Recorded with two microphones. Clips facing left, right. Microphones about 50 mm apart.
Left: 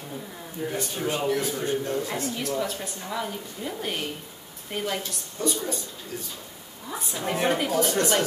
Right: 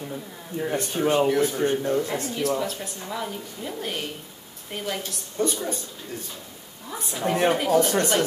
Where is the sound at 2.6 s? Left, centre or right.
Centre.